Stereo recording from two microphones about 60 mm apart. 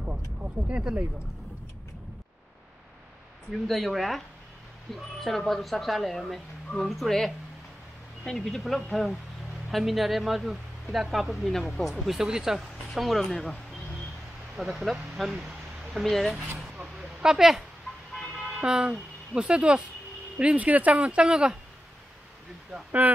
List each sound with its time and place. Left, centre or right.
0.0 s vehicle: right
0.7 s speech: centre
3.6 s speech: centre
14.6 s speech: centre
16.3 s a sound: centre
18.6 s speech: centre
22.8 s speech: right